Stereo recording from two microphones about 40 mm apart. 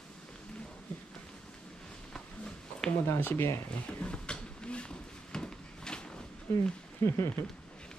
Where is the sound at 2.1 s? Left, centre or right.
Left.